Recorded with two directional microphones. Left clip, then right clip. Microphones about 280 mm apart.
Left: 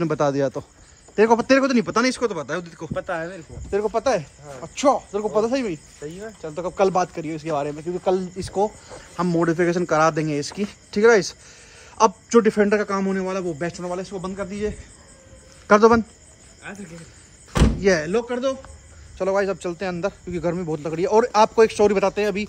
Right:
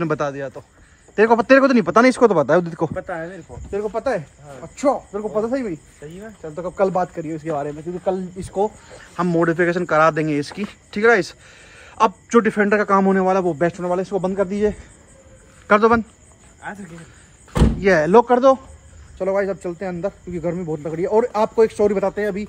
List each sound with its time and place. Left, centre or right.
0.0 s speech: centre
3.7 s speech: left
6.0 s speech: left
6.4 s speech: centre
8.6 s speech: centre
17.5 s speech: centre
19.1 s speech: centre